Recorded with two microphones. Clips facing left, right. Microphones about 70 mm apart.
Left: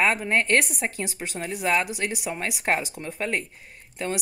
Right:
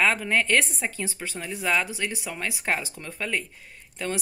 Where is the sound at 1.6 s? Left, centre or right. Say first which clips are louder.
Left 1 dB; left.